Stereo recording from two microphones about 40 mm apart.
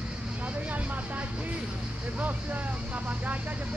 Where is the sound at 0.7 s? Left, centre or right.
Right.